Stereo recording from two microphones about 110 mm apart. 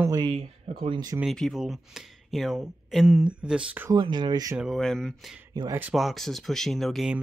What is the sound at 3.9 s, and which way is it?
Speech, 40° right (ahead or behind).